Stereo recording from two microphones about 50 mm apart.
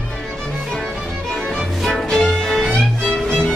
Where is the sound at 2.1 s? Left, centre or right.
Centre.